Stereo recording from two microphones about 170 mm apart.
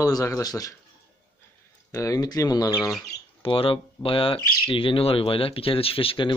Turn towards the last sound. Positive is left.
turn(degrees=30)  # may be behind; listen again after turning